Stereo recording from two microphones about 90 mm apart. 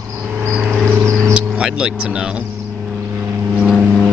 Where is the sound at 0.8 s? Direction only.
30° right (ahead or behind).